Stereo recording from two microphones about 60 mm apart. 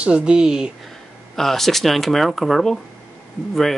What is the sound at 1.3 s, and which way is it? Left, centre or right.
Speech, centre.